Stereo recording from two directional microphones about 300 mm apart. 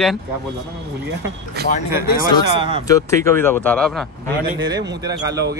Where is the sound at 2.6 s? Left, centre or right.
Centre.